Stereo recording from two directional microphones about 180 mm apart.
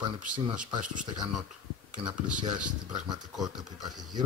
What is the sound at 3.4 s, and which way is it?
Speech, 20° right (ahead or behind).